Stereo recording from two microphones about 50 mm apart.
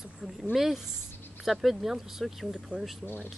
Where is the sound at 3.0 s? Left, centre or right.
Left.